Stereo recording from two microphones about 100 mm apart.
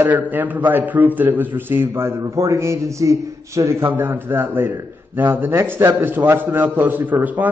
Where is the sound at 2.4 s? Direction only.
30° right (ahead or behind).